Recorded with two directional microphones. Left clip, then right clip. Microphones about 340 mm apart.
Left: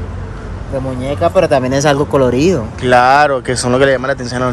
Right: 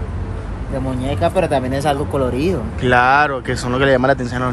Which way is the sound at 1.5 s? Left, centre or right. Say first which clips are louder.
Left 6 dB; left.